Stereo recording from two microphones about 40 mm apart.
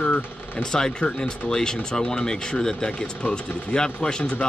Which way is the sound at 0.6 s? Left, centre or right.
Centre.